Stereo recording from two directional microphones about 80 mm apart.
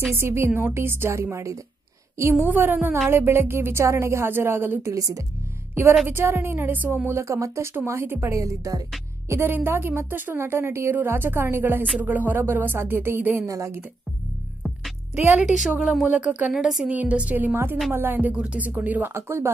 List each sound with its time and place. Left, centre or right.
0.1 s a woman's voice: right
2.4 s a woman's voice: right
4.9 s a woman's voice: right
6.0 s a woman's voice: right
7.1 s speech: right
9.3 s a woman's voice: right
13.5 s speech: right
15.3 s a woman's voice: centre
16.1 s a woman's voice: centre
16.9 s a woman's voice: centre